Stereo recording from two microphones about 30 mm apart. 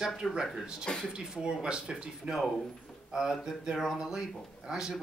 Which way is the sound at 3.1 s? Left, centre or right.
Centre.